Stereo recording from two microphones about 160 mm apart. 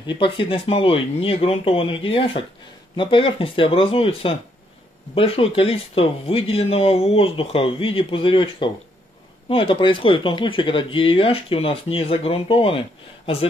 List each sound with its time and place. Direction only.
0.0 s speech: 30° left (ahead or behind)